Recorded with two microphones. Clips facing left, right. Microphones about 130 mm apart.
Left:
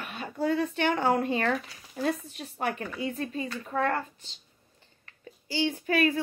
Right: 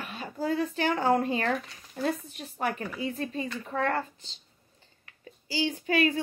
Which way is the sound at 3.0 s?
35° right (ahead or behind).